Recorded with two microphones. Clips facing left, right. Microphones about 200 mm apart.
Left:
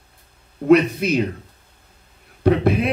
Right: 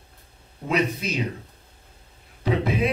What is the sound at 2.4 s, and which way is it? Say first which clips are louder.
Speech: left 6 dB; 60° left (ahead or behind).